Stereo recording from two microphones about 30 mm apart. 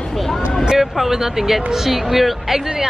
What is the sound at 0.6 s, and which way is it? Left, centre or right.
Speech, centre.